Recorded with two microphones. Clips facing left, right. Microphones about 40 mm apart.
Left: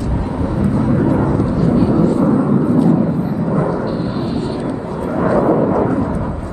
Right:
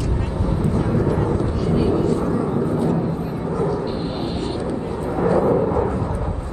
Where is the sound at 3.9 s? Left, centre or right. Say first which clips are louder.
Left 5 dB; right.